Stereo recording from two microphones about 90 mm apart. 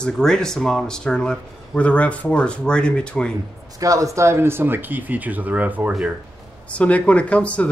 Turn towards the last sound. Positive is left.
turn(degrees=15)  # may be behind; listen again after turning